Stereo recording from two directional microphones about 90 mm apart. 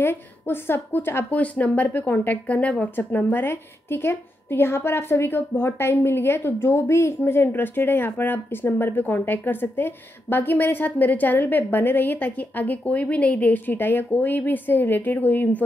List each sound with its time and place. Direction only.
0.0 s a woman's voice: 25° left (ahead or behind)